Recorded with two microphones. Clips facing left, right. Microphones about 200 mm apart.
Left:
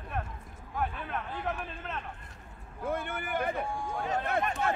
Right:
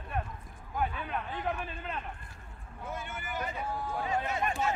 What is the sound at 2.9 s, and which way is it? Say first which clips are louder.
Speech: left 7 dB; 55° left (ahead or behind).